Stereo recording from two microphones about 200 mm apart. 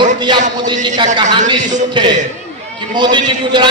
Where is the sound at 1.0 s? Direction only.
20° right (ahead or behind).